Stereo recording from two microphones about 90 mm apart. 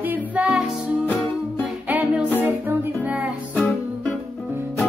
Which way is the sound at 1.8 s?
20° right (ahead or behind).